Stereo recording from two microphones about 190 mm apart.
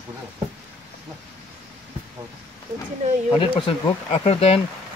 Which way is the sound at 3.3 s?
25° left (ahead or behind).